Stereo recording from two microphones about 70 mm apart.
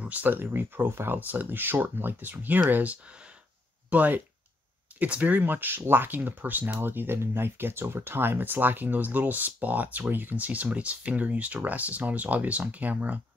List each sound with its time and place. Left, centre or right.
0.0 s speech: right